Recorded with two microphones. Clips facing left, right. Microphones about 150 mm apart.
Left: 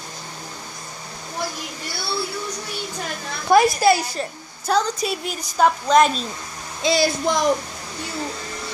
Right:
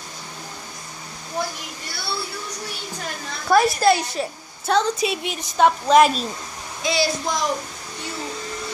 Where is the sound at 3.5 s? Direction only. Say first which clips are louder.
Left 1 dB; 5° left (ahead or behind).